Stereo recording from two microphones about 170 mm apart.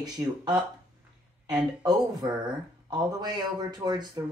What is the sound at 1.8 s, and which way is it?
Speech, 25° right (ahead or behind).